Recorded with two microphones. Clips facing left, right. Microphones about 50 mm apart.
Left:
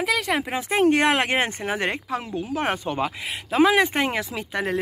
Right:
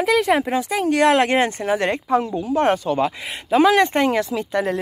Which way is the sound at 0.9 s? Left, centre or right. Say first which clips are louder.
Right 4 dB; left.